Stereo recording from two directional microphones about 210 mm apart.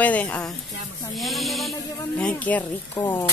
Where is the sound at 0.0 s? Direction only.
5° left (ahead or behind).